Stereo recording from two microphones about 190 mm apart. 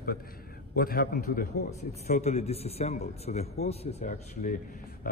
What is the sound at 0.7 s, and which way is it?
A man's voice, 50° left (ahead or behind).